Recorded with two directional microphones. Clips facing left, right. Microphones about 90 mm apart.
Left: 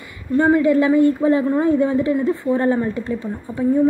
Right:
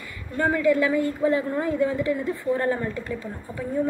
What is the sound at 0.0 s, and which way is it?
A woman's voice, 20° left (ahead or behind).